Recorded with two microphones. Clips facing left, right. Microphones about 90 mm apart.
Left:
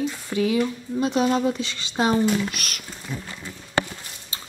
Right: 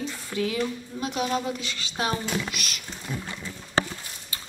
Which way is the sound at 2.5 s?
50° left (ahead or behind).